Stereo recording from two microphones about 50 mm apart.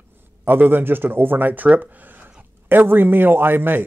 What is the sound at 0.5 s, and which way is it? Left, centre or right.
Speech, right.